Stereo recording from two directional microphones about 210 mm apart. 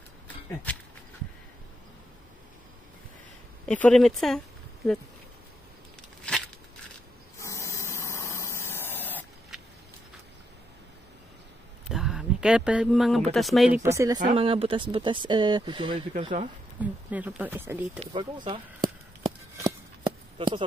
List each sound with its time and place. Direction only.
0.7 s speech: 5° left (ahead or behind)
3.6 s speech: 5° left (ahead or behind)
7.3 s a sound: 15° left (ahead or behind)
11.9 s speech: centre (ahead or behind)
13.8 s speech: 15° right (ahead or behind)
14.2 s speech: 25° right (ahead or behind)
16.1 s speech: 35° right (ahead or behind)
16.8 s speech: 5° right (ahead or behind)
18.1 s speech: 25° right (ahead or behind)
19.6 s a sound: 20° right (ahead or behind)